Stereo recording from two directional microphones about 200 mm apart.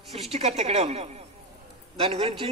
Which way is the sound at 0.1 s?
30° right (ahead or behind).